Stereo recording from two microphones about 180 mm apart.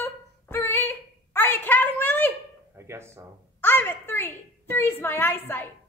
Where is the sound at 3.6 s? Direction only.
10° left (ahead or behind).